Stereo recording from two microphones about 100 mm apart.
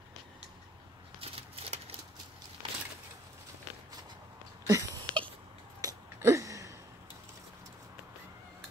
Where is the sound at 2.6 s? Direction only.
55° right (ahead or behind).